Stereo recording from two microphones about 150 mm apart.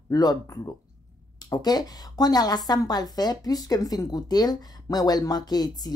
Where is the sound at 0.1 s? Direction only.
25° left (ahead or behind).